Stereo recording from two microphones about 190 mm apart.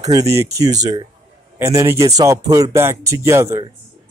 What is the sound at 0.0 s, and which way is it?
Speech, 20° right (ahead or behind).